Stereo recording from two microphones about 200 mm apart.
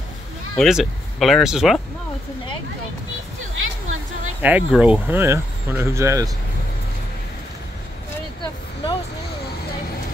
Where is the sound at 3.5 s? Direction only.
85° right.